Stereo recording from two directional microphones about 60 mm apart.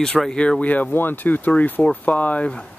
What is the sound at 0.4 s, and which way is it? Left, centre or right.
Speech, left.